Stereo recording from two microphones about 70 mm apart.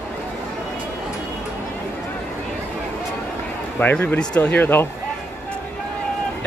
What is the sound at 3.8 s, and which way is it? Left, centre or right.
Speech, left.